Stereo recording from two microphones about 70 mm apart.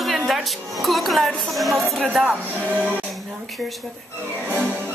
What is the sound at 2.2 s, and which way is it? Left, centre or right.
Speech, right.